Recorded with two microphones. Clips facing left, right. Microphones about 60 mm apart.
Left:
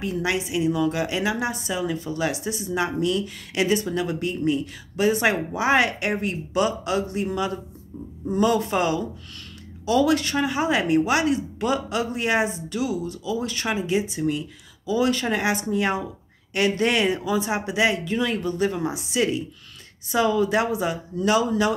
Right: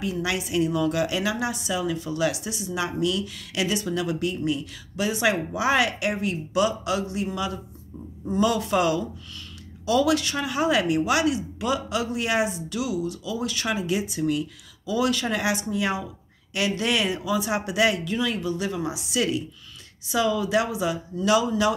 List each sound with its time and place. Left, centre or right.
0.0 s speech: left
0.5 s speech: centre; by 21.7 s left